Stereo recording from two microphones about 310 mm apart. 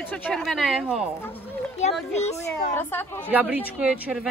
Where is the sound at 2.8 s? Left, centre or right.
Centre.